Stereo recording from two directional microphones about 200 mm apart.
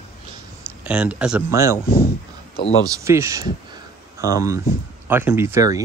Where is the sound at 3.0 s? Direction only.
15° right (ahead or behind).